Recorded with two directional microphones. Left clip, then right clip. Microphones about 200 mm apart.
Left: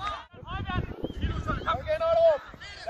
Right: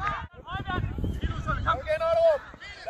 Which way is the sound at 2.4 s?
50° left (ahead or behind).